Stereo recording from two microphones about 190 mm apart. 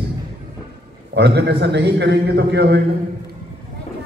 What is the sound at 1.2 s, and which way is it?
A man's voice, 60° right (ahead or behind).